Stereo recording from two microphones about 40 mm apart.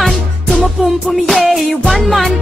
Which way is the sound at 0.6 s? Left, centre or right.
Centre.